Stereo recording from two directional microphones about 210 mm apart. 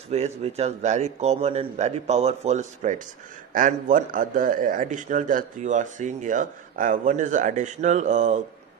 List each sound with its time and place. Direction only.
0.1 s a man's voice: 30° right (ahead or behind)